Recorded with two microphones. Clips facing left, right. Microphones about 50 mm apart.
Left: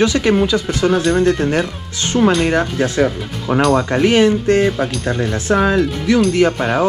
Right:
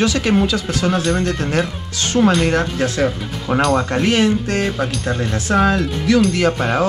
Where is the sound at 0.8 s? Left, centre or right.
Centre.